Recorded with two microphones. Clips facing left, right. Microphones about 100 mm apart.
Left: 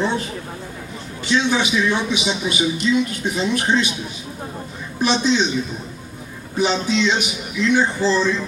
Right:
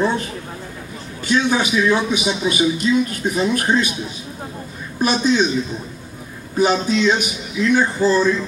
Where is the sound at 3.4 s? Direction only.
45° right (ahead or behind).